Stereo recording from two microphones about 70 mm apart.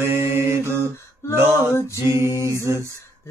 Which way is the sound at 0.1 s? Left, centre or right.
Right.